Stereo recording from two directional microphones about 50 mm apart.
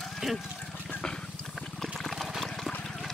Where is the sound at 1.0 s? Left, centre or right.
Centre.